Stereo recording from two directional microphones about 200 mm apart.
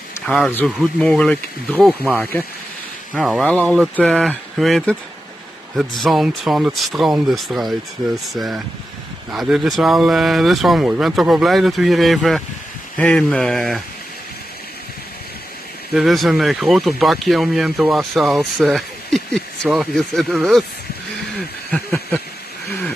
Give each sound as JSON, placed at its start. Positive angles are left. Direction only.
{"t": 0.3, "sound": "speech", "side_deg": 5}
{"t": 15.9, "sound": "speech", "side_deg": 0}
{"t": 21.6, "sound": "a sound", "side_deg": 5}